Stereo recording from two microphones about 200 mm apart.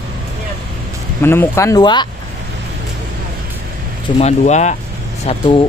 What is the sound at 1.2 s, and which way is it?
Speech, 10° left (ahead or behind).